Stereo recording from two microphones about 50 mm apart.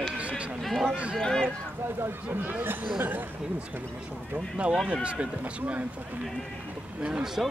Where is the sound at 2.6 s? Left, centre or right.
Right.